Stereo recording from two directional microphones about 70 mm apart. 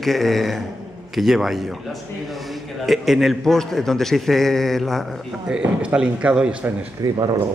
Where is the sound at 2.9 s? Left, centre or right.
Centre.